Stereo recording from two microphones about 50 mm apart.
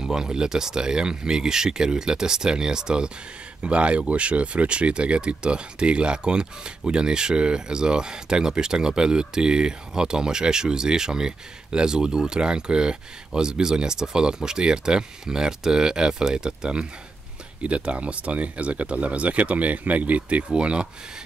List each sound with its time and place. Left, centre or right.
0.0 s speech: centre